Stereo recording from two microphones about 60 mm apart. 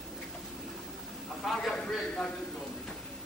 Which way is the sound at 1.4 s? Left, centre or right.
Centre.